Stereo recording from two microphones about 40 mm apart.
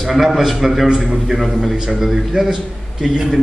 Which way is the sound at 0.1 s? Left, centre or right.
Centre.